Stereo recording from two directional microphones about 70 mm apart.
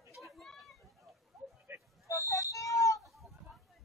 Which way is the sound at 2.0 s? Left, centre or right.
Left.